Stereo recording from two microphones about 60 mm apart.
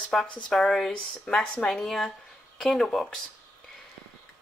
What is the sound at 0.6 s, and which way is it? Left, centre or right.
Speech, centre.